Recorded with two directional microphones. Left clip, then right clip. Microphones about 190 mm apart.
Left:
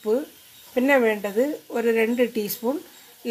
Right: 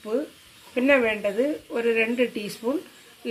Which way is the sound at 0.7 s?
65° left (ahead or behind).